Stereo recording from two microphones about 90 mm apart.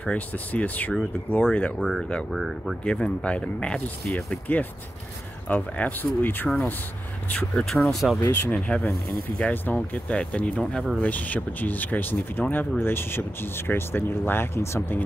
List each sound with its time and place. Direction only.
0.0 s speech: 15° left (ahead or behind)
2.3 s speech: centre (ahead or behind)
2.8 s speech: 10° left (ahead or behind)
7.2 s speech: 10° left (ahead or behind)
8.2 s speech: 20° left (ahead or behind)